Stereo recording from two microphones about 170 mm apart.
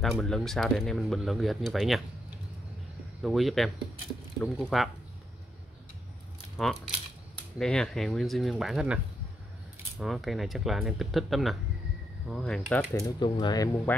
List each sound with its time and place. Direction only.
0.0 s speech: centre (ahead or behind)
3.2 s speech: centre (ahead or behind)
6.6 s speech: centre (ahead or behind)
13.0 s speech: 25° left (ahead or behind)
13.9 s speech: 10° left (ahead or behind)